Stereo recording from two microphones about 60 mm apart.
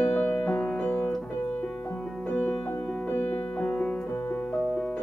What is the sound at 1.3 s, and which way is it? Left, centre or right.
Piano, left.